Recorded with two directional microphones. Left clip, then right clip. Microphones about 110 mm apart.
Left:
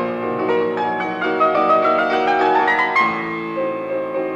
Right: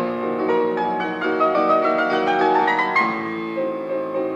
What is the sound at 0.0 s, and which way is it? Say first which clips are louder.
Music: left 1 dB; 40° right (ahead or behind).